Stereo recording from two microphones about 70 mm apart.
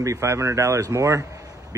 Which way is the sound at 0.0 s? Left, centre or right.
Right.